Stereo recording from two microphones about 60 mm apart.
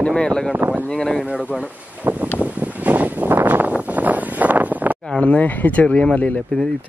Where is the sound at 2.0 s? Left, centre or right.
Right.